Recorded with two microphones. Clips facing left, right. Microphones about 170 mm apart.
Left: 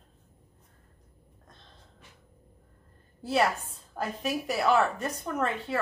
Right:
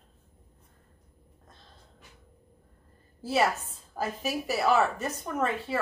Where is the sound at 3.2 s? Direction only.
5° right (ahead or behind).